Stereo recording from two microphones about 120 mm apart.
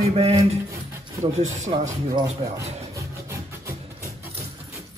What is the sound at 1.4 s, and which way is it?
Speech, 75° right (ahead or behind).